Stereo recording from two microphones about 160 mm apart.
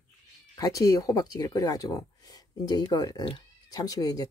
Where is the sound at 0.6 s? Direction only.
20° left (ahead or behind).